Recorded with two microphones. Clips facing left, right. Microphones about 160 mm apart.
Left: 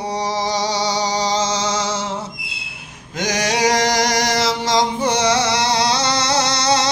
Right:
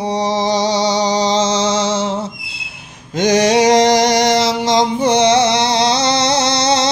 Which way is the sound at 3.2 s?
25° right (ahead or behind).